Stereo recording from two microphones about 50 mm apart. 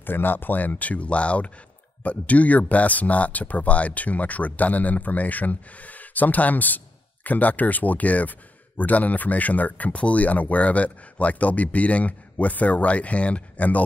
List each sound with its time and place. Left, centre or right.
0.0 s speech: left